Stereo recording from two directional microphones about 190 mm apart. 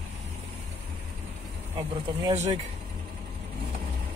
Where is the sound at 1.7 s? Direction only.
20° right (ahead or behind).